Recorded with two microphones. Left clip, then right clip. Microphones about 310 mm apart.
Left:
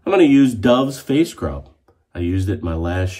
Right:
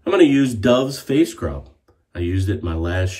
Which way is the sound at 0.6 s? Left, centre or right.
Centre.